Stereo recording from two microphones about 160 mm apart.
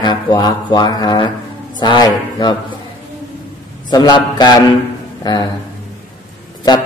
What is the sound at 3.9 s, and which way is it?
Speech, 25° left (ahead or behind).